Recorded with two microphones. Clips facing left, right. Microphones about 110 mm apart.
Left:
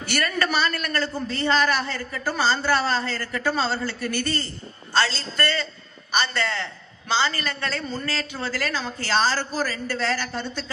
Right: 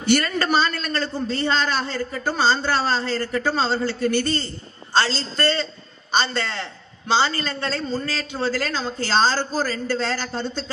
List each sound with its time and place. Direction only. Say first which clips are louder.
0.1 s a man's voice: right 5 dB; 25° right (ahead or behind)